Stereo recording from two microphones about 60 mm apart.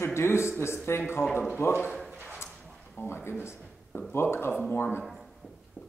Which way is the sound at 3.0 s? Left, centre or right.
Left.